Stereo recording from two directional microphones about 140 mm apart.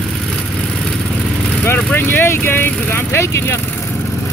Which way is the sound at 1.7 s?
15° left (ahead or behind).